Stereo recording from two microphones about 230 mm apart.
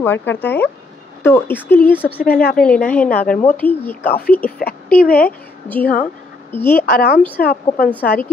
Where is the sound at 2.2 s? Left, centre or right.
Left.